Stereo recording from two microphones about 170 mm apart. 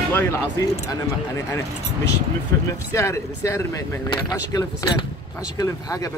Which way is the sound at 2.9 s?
20° left (ahead or behind).